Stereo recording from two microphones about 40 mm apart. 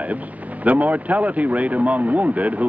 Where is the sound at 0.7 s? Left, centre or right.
Right.